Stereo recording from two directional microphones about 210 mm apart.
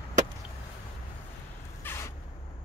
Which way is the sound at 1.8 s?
10° left (ahead or behind).